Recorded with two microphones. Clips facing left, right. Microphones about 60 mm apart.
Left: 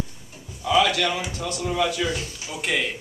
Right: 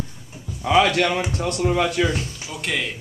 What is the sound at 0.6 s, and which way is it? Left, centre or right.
A man's voice, right.